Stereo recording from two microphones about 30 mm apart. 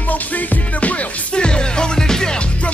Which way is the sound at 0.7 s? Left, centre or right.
Left.